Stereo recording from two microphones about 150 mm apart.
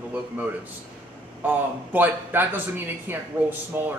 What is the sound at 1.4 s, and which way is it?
A man's voice, 10° right (ahead or behind).